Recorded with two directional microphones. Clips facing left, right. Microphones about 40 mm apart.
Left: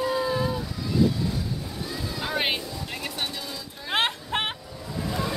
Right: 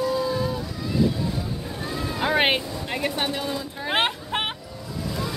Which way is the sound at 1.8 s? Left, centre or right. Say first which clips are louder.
Right 7 dB; right.